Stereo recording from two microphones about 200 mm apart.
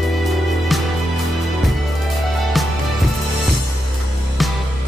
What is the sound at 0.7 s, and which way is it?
Music, centre (ahead or behind).